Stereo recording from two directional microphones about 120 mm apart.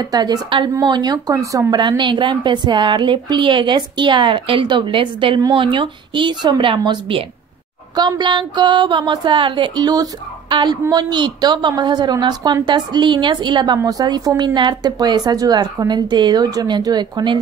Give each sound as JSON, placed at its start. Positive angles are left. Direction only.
{"t": 0.0, "sound": "a woman's voice", "side_deg": -35}